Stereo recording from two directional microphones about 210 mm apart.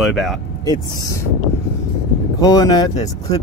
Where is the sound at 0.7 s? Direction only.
15° left (ahead or behind).